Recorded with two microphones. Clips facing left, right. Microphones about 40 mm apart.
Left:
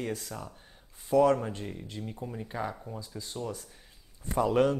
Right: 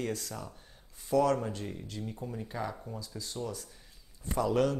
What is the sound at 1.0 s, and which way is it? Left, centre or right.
Speech, centre.